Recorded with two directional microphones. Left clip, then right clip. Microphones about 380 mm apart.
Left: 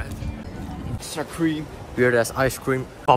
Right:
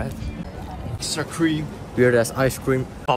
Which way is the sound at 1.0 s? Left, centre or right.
Left.